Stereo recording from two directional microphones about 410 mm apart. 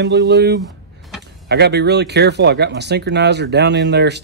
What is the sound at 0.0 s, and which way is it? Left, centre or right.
Speech, right.